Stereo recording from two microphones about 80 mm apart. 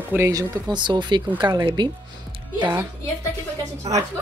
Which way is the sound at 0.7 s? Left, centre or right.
Right.